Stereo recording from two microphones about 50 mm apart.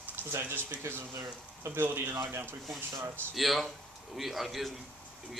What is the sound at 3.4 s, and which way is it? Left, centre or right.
A man's voice, centre.